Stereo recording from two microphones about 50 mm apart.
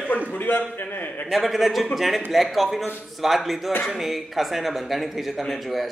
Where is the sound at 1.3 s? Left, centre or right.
Centre.